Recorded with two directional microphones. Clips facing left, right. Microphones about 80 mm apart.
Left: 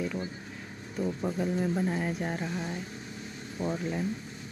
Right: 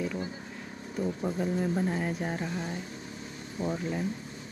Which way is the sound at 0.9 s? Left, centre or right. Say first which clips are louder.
Even; centre.